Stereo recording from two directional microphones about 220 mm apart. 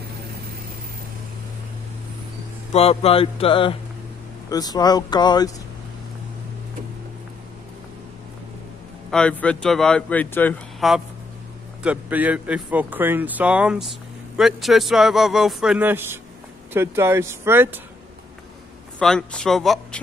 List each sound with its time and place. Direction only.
2.7 s speech: 25° left (ahead or behind)
9.1 s speech: 5° left (ahead or behind)
11.8 s speech: 5° right (ahead or behind)
18.9 s speech: 5° left (ahead or behind)